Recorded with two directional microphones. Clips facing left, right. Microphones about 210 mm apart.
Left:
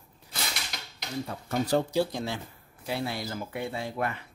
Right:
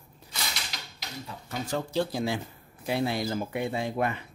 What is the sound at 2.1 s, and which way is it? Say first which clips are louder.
Speech: right 4 dB; 10° right (ahead or behind).